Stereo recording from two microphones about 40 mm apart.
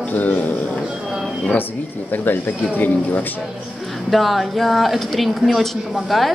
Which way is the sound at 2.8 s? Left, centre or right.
Left.